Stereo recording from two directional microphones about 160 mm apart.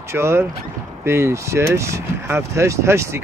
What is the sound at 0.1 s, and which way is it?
Speech, 15° right (ahead or behind).